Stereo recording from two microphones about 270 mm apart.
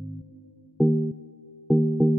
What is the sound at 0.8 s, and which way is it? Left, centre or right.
Music, centre.